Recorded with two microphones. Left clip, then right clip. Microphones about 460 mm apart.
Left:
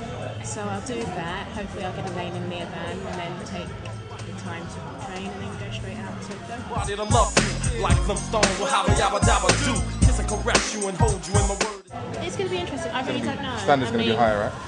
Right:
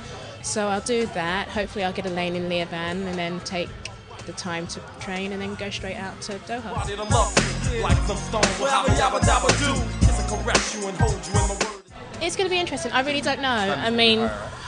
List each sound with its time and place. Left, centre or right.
0.6 s a woman's voice: right
6.8 s music: centre
12.3 s a woman's voice: right